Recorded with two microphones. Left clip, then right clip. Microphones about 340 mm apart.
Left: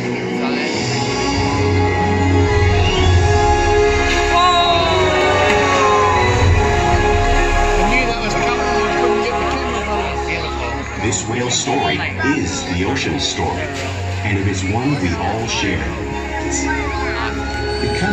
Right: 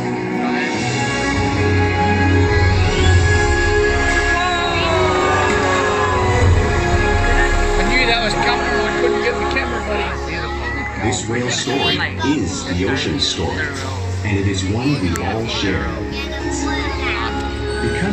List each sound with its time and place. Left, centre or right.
4.4 s music: centre
8.0 s music: right